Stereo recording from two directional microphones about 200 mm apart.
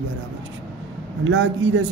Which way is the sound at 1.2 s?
70° right (ahead or behind).